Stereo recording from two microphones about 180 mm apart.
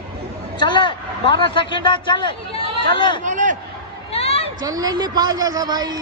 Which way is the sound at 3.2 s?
45° right (ahead or behind).